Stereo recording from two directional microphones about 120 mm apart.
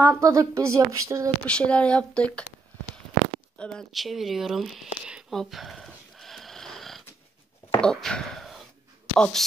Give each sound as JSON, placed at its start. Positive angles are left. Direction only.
{"t": 0.0, "sound": "a woman's voice", "side_deg": -25}
{"t": 1.4, "sound": "speech", "side_deg": 10}
{"t": 3.5, "sound": "a sound", "side_deg": 5}
{"t": 7.8, "sound": "speech", "side_deg": 5}